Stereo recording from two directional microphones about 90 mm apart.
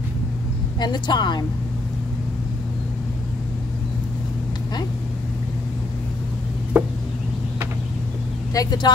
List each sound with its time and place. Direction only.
0.7 s speech: 55° left (ahead or behind)
6.7 s a sound: 20° right (ahead or behind)
8.5 s speech: 50° left (ahead or behind)